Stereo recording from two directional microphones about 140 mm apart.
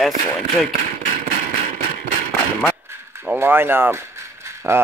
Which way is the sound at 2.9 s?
15° right (ahead or behind).